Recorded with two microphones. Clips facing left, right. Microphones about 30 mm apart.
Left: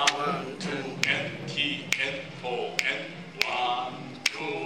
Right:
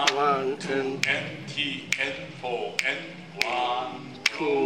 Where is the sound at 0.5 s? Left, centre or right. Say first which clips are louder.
Right 5 dB; centre.